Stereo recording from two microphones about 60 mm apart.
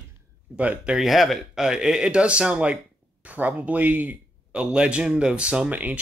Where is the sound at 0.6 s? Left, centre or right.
Right.